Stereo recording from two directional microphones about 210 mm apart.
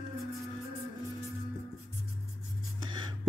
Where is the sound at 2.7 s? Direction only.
20° right (ahead or behind).